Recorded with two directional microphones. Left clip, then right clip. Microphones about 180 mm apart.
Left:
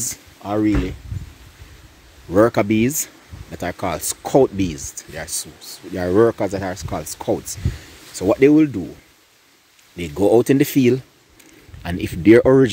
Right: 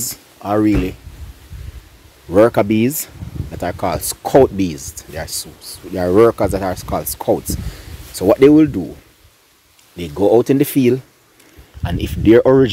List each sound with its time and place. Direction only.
0.0 s speech: 10° right (ahead or behind)
2.3 s speech: 5° right (ahead or behind)
9.9 s speech: centre (ahead or behind)